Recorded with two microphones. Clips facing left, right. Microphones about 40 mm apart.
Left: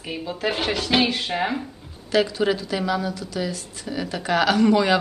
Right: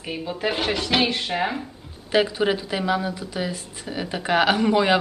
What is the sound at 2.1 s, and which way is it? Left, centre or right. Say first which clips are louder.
Speech: even; right.